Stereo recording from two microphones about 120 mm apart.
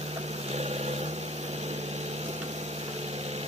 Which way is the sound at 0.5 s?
60° right (ahead or behind).